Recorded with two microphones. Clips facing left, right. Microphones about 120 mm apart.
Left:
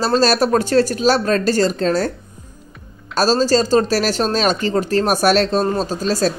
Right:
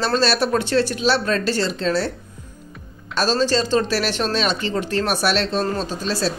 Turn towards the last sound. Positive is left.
turn(degrees=45)  # may be behind; listen again after turning